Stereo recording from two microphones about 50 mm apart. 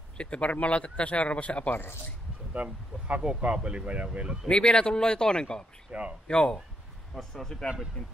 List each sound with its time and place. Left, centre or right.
0.2 s a man's voice: left
2.5 s speech: right
4.5 s speech: centre
5.9 s speech: right
6.2 s speech: centre
7.1 s speech: centre